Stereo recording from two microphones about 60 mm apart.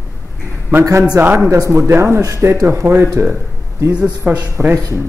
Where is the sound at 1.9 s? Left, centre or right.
Right.